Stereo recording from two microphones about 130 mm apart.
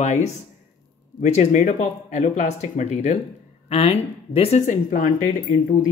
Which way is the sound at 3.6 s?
50° left (ahead or behind).